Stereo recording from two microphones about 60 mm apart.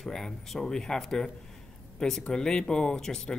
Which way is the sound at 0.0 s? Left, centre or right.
Centre.